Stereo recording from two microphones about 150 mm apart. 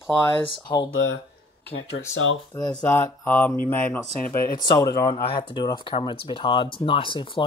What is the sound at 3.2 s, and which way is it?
Speech, 10° left (ahead or behind).